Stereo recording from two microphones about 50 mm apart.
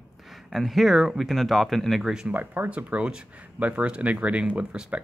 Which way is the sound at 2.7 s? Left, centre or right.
Right.